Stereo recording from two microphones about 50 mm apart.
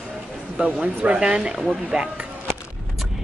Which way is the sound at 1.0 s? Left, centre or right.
Centre.